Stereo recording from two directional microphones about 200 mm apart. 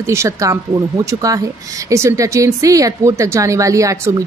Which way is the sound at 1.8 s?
15° right (ahead or behind).